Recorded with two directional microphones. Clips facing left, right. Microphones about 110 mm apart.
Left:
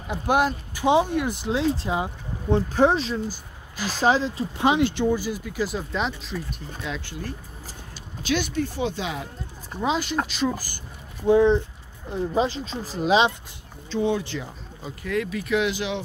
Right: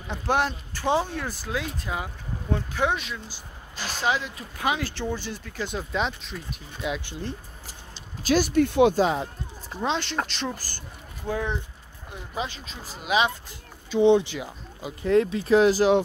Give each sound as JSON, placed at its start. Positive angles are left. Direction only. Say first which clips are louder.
{"t": 0.1, "sound": "speech", "louder": "left 3 dB", "side_deg": 10}
{"t": 2.7, "sound": "speech", "louder": "left 6 dB", "side_deg": 35}
{"t": 3.7, "sound": "speech", "louder": "left 4 dB", "side_deg": 5}
{"t": 4.0, "sound": "speech", "louder": "left 6 dB", "side_deg": 30}
{"t": 6.8, "sound": "speech", "louder": "right 3 dB", "side_deg": -20}
{"t": 8.2, "sound": "speech", "louder": "right 3 dB", "side_deg": -40}
{"t": 8.5, "sound": "speech", "louder": "right 8 dB", "side_deg": -60}
{"t": 8.9, "sound": "speech", "louder": "right 8 dB", "side_deg": -40}
{"t": 9.7, "sound": "speech", "louder": "left 3 dB", "side_deg": 5}
{"t": 11.2, "sound": "speech", "louder": "left 12 dB", "side_deg": 25}
{"t": 13.8, "sound": "speech", "louder": "right 6 dB", "side_deg": -20}
{"t": 15.0, "sound": "speech", "louder": "right 6 dB", "side_deg": -30}